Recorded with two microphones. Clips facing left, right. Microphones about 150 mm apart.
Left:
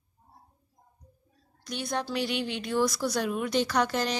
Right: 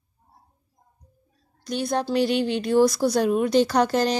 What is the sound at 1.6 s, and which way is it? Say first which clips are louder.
Speech: right 7 dB; 35° right (ahead or behind).